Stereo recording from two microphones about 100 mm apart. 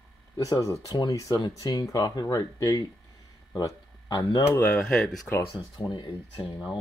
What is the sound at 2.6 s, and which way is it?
Speech, 35° left (ahead or behind).